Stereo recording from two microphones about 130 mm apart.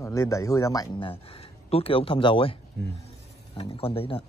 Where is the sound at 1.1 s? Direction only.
50° left (ahead or behind).